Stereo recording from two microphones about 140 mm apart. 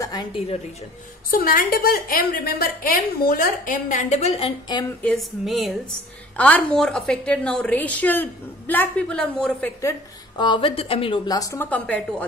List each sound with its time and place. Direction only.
0.0 s a woman's voice: 30° left (ahead or behind)
1.3 s a woman's voice: 90° left; by 4.8 s 35° left (ahead or behind)
5.0 s a sound: centre (ahead or behind)
6.3 s a woman's voice: 10° left (ahead or behind)
9.8 s a woman's voice: 25° left (ahead or behind); by 11.1 s 40° left (ahead or behind)
11.2 s a woman's voice: 25° left (ahead or behind)